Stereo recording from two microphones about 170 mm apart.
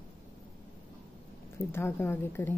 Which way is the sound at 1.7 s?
15° left (ahead or behind).